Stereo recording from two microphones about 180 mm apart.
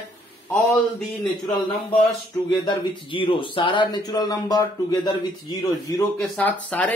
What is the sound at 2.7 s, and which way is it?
Speech, 30° left (ahead or behind).